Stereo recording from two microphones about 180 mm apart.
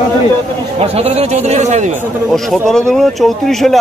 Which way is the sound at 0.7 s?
35° right (ahead or behind).